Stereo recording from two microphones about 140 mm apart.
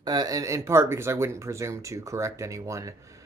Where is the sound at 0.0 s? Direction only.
30° right (ahead or behind).